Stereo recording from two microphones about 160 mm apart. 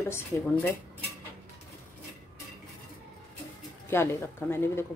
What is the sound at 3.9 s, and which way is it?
Speech, 15° left (ahead or behind).